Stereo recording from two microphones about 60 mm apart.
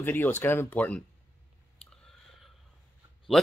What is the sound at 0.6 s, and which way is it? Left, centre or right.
Speech, left.